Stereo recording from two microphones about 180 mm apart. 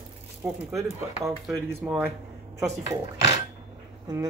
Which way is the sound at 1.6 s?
10° right (ahead or behind).